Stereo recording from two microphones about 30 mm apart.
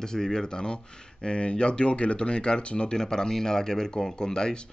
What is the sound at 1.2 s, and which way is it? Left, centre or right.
Speech, left.